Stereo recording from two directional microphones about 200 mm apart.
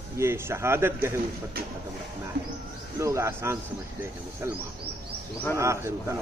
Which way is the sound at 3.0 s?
15° right (ahead or behind).